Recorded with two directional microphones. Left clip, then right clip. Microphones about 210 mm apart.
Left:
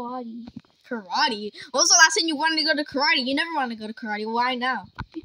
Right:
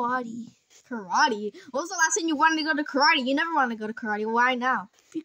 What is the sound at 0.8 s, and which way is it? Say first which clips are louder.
A woman's voice: right 1 dB; 10° left (ahead or behind).